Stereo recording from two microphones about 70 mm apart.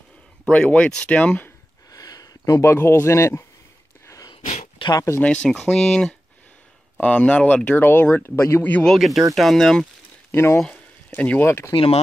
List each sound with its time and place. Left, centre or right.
0.5 s speech: centre
1.9 s a sound: left
2.6 s speech: left
4.0 s a sound: left
5.2 s speech: centre
7.0 s speech: centre
8.8 s speech: centre
10.3 s speech: left
11.1 s speech: left
11.4 s speech: left